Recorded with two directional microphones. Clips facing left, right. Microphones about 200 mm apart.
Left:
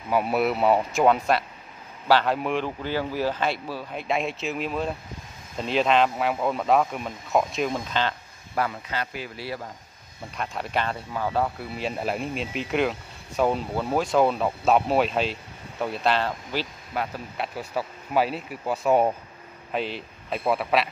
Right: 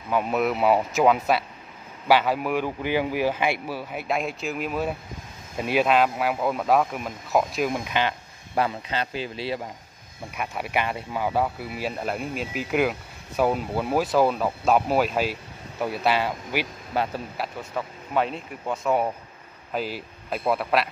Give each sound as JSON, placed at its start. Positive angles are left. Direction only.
{"t": 0.1, "sound": "speech", "side_deg": 5}
{"t": 10.3, "sound": "speech", "side_deg": -10}
{"t": 17.0, "sound": "speech", "side_deg": -30}
{"t": 17.4, "sound": "speech", "side_deg": 0}
{"t": 18.9, "sound": "speech", "side_deg": 25}
{"t": 19.7, "sound": "speech", "side_deg": 0}